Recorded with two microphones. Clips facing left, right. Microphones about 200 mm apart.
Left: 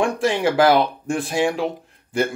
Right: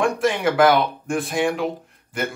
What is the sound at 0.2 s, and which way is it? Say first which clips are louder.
Speech: even; 30° left (ahead or behind).